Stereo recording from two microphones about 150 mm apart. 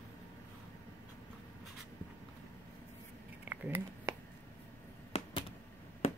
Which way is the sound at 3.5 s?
15° right (ahead or behind).